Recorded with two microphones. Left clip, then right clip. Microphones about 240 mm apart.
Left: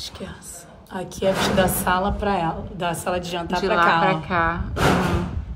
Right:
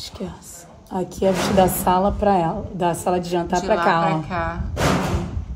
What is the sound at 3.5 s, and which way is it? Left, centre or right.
A woman's voice, centre.